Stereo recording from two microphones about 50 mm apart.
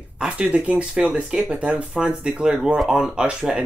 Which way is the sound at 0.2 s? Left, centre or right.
Centre.